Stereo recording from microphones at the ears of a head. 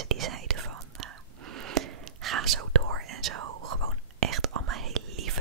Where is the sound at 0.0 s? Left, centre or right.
Right.